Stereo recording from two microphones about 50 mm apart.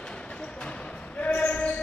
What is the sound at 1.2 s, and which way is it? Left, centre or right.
Basketball bounce, left.